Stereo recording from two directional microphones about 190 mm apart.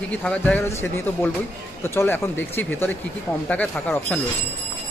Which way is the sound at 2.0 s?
10° left (ahead or behind).